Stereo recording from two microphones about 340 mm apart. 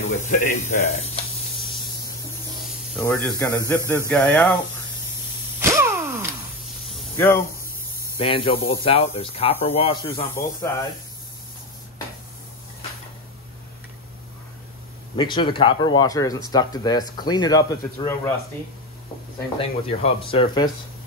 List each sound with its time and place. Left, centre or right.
0.1 s speech: left
2.6 s speech: centre
3.7 s a man's voice: centre
4.1 s speech: centre
5.6 s a sound: centre
6.9 s a sound: centre
8.2 s speech: centre
15.1 s speech: centre
19.9 s speech: centre